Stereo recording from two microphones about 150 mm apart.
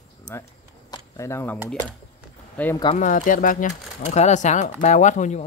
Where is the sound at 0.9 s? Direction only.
20° left (ahead or behind).